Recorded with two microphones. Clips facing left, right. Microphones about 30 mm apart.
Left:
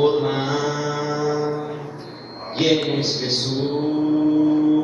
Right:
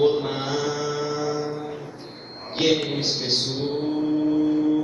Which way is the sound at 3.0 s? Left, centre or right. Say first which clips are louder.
Left 2 dB; centre.